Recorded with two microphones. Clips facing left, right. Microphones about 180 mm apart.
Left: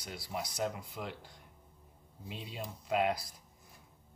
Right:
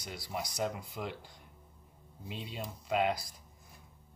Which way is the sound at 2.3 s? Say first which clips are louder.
Right 1 dB; centre (ahead or behind).